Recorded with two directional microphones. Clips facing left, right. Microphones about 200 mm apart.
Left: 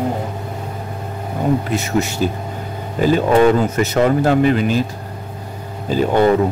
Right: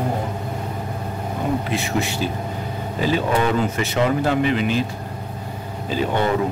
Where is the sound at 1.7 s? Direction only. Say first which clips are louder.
Left 4 dB; 40° left (ahead or behind).